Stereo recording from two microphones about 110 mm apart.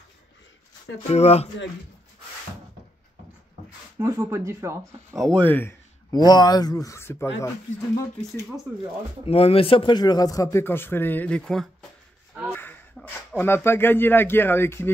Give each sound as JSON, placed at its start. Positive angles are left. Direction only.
{"t": 1.0, "sound": "speech", "side_deg": 70}
{"t": 4.0, "sound": "speech", "side_deg": -25}
{"t": 5.3, "sound": "speech", "side_deg": 15}
{"t": 6.1, "sound": "speech", "side_deg": 40}
{"t": 7.9, "sound": "speech", "side_deg": 35}
{"t": 9.2, "sound": "speech", "side_deg": 60}
{"t": 10.6, "sound": "speech", "side_deg": 20}
{"t": 13.0, "sound": "a sound", "side_deg": 5}
{"t": 13.4, "sound": "speech", "side_deg": 20}